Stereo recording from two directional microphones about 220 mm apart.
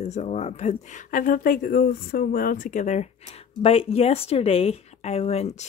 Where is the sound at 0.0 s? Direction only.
30° left (ahead or behind).